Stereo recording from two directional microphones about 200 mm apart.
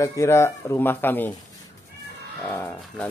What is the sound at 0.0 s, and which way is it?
Speech, 15° left (ahead or behind).